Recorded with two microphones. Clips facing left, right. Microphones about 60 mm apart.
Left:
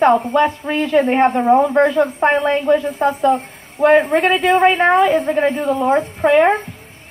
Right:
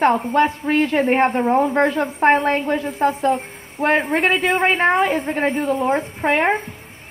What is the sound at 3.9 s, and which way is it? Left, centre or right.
Speech, right.